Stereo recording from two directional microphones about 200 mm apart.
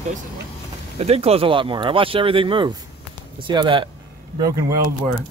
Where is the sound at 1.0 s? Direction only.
30° right (ahead or behind).